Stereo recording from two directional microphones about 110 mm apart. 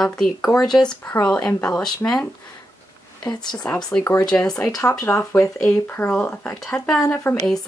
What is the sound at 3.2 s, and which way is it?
Speech, 40° left (ahead or behind).